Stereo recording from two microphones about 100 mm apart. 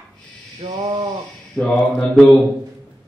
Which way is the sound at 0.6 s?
65° right (ahead or behind).